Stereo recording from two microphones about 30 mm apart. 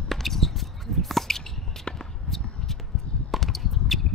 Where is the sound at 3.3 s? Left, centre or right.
Centre.